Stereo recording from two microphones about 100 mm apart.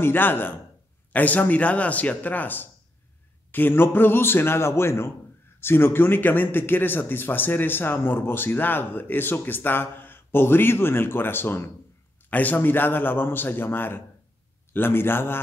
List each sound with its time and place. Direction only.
0.0 s speech: 20° left (ahead or behind)